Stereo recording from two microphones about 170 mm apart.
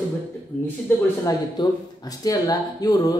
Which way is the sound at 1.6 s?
25° left (ahead or behind).